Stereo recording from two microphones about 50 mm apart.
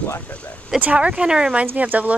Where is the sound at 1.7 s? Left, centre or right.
Right.